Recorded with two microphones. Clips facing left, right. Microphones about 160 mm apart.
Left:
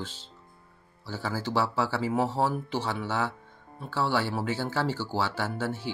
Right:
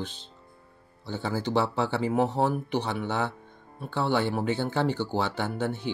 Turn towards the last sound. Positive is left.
turn(degrees=-20)  # may be behind; listen again after turning